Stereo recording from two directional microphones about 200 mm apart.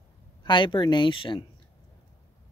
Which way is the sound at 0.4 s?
25° left (ahead or behind).